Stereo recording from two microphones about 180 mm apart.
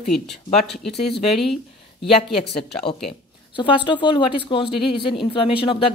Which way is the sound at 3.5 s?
25° left (ahead or behind).